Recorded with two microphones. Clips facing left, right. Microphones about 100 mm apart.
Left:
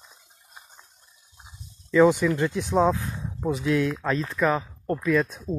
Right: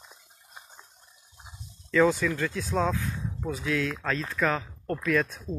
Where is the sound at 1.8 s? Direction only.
15° left (ahead or behind).